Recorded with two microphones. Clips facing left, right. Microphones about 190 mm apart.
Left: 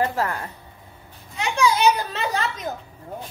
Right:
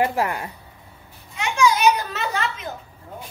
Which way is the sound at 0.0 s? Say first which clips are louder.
Right 2 dB; 15° right (ahead or behind).